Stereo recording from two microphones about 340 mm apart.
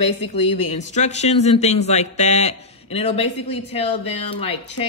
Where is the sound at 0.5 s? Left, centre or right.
Centre.